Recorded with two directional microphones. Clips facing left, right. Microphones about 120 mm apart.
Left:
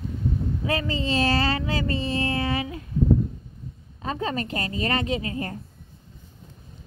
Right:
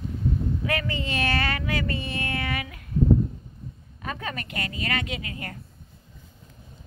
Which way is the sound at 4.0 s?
25° left (ahead or behind).